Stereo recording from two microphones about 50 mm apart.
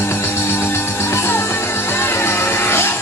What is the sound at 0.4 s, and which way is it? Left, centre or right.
Music, left.